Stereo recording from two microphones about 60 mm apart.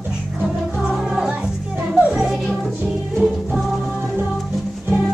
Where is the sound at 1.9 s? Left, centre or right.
Centre.